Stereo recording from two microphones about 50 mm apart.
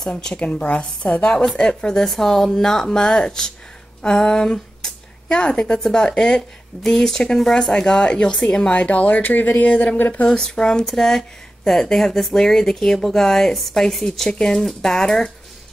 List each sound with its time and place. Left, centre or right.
0.1 s a woman's voice: centre
1.6 s speech: centre
8.7 s speech: left
9.7 s a woman's voice: left
9.9 s speech: left
10.2 s speech: centre